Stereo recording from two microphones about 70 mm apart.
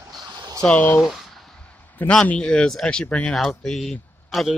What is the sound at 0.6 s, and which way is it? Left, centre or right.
Speech, centre.